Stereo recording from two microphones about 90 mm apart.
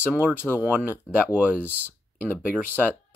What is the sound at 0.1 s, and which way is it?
Speech, 15° right (ahead or behind).